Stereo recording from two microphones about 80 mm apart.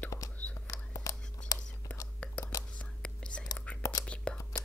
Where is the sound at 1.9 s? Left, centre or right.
Centre.